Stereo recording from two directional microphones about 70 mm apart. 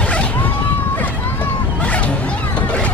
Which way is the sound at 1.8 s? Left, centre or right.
Centre.